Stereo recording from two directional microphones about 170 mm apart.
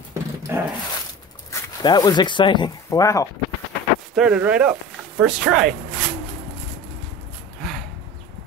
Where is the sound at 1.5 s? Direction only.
25° left (ahead or behind).